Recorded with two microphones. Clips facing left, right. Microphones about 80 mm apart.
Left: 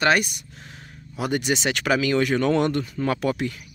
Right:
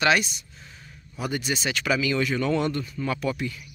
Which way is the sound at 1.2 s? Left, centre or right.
Left.